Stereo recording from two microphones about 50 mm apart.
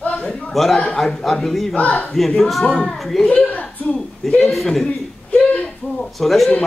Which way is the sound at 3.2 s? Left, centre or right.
Left.